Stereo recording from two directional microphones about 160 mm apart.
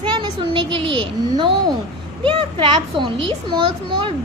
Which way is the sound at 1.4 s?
30° right (ahead or behind).